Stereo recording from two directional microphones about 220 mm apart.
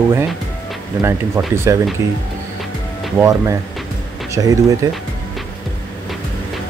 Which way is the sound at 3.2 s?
15° right (ahead or behind).